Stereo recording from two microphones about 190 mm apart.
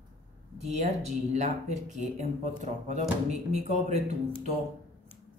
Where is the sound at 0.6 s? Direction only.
35° right (ahead or behind).